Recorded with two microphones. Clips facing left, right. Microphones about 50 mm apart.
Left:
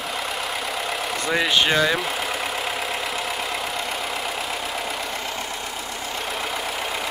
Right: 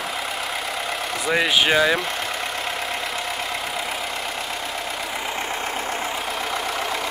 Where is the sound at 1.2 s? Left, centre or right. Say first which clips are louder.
Right 1 dB; centre.